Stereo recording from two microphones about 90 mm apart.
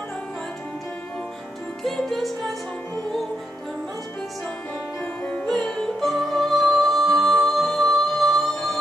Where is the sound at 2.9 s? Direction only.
5° left (ahead or behind).